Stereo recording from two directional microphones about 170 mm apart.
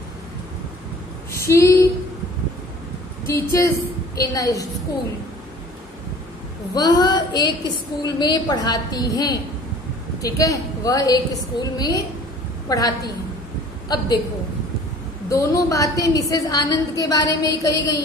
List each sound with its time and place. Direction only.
1.3 s a sound: 15° left (ahead or behind)
3.3 s a woman's voice: 15° left (ahead or behind)
6.7 s a woman's voice: 25° left (ahead or behind)
15.2 s a woman's voice: 20° left (ahead or behind)